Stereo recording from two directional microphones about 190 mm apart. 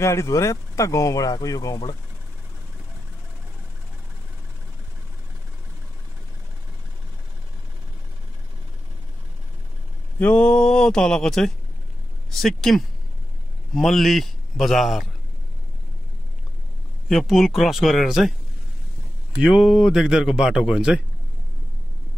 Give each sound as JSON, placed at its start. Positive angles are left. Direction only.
{"t": 0.0, "sound": "speech", "side_deg": 15}
{"t": 10.1, "sound": "speech", "side_deg": 10}
{"t": 17.1, "sound": "speech", "side_deg": 0}
{"t": 19.3, "sound": "speech", "side_deg": 0}